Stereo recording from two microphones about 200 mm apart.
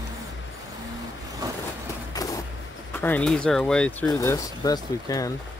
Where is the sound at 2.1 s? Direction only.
15° left (ahead or behind).